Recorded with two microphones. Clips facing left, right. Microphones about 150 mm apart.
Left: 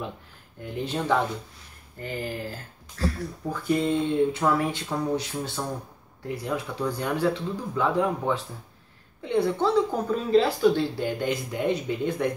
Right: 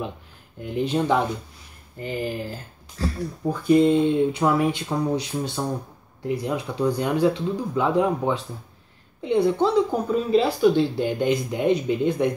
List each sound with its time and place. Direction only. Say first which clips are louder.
0.6 s speech: right 6 dB; 20° right (ahead or behind)